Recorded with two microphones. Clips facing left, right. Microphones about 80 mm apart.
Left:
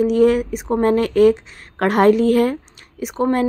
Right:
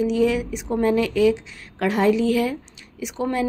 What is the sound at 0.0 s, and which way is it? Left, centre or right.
Speech, left.